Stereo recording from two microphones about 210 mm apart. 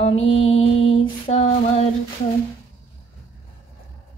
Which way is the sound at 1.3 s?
30° left (ahead or behind).